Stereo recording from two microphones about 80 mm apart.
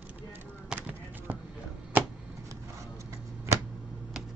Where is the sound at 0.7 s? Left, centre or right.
Right.